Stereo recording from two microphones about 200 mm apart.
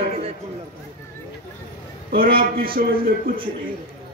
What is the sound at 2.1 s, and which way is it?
A man's voice, 45° right (ahead or behind).